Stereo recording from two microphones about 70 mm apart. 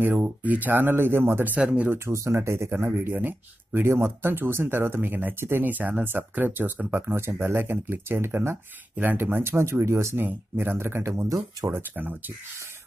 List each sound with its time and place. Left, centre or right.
0.0 s speech: right
2.0 s speech: right
10.2 s speech: right
11.6 s speech: right